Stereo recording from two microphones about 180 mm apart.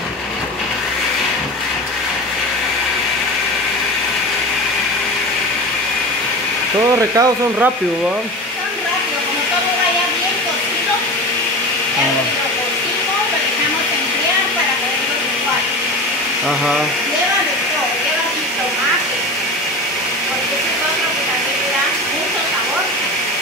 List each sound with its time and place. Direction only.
7.0 s speech: 15° right (ahead or behind)